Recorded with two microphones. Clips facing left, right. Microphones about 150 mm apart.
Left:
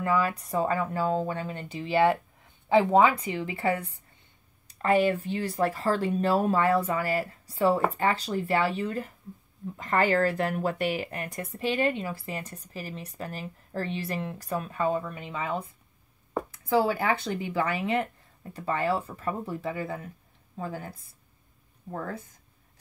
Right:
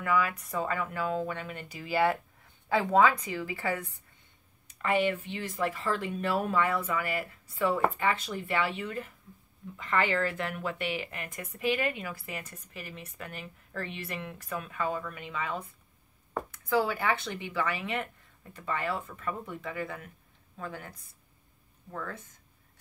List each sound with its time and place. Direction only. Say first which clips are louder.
0.0 s a woman's voice: left 3 dB; 35° left (ahead or behind)
4.6 s speech: left 5 dB; 40° left (ahead or behind)